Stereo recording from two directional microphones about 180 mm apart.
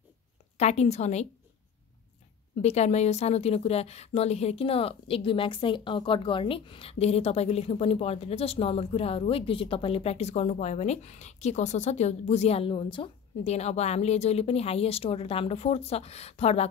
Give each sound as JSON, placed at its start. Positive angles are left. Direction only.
{"t": 0.6, "sound": "a woman's voice", "side_deg": 40}
{"t": 2.6, "sound": "a woman's voice", "side_deg": 40}